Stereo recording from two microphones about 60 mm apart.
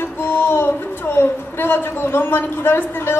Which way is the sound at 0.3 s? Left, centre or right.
Left.